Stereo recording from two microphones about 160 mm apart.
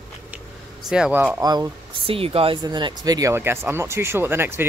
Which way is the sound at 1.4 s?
25° right (ahead or behind).